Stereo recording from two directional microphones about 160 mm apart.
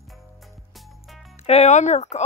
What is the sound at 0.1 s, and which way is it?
Music, centre (ahead or behind).